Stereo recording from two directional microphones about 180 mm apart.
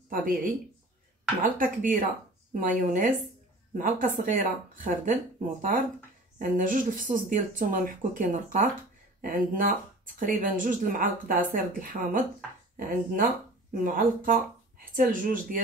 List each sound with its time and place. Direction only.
0.1 s speech: 50° right (ahead or behind)
6.3 s speech: 50° right (ahead or behind)